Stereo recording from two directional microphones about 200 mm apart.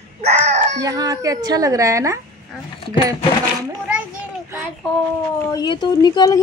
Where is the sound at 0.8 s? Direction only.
15° right (ahead or behind).